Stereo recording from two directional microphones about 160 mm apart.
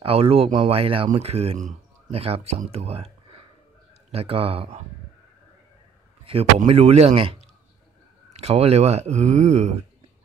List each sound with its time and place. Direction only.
0.0 s speech: 35° right (ahead or behind)
6.2 s speech: 40° right (ahead or behind)